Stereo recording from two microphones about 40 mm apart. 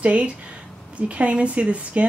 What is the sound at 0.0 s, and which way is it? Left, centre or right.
A woman's voice, right.